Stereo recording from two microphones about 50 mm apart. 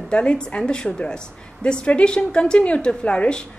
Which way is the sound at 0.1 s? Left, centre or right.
Left.